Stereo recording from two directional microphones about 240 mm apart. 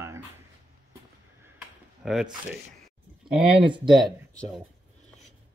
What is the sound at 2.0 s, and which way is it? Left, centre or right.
Speech, centre.